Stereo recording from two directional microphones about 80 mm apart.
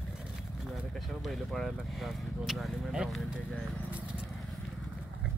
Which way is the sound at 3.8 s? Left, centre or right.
Centre.